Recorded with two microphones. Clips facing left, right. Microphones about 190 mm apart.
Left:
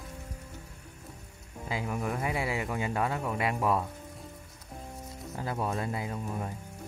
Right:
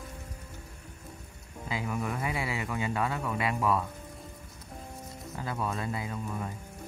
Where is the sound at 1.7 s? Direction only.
35° left (ahead or behind).